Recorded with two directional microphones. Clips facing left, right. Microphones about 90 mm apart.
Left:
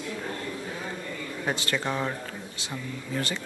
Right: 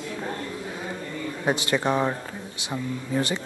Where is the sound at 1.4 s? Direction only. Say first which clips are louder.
Right 5 dB; 20° right (ahead or behind).